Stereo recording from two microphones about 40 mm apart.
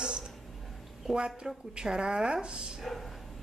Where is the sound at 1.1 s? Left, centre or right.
Right.